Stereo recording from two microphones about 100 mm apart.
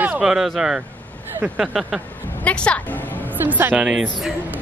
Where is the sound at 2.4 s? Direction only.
10° left (ahead or behind).